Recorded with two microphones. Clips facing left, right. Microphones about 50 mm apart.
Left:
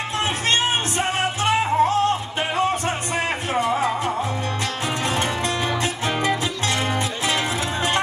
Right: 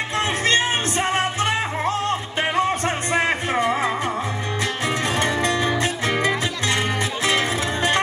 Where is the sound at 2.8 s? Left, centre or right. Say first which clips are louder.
Right 3 dB; right.